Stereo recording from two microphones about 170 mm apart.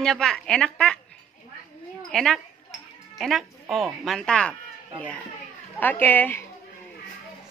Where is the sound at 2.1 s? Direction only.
Centre (ahead or behind).